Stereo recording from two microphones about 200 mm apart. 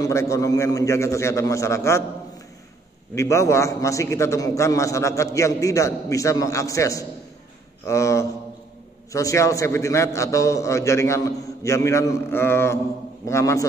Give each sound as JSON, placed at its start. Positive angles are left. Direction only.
{"t": 0.0, "sound": "a man's voice", "side_deg": 15}
{"t": 3.2, "sound": "a man's voice", "side_deg": 15}